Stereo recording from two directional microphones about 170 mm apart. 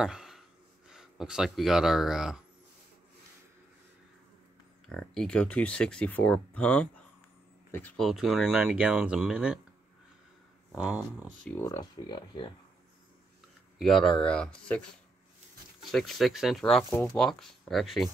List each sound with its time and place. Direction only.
0.0 s gasp: 5° right (ahead or behind)
0.8 s speech: 5° right (ahead or behind)
4.8 s speech: centre (ahead or behind)
10.7 s speech: 5° right (ahead or behind)
11.1 s speech: 15° left (ahead or behind)
13.7 s speech: centre (ahead or behind)